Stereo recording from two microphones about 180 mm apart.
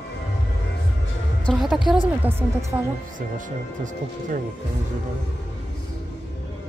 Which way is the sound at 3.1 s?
45° right (ahead or behind).